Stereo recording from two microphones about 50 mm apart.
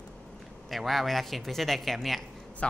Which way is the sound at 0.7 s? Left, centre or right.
Centre.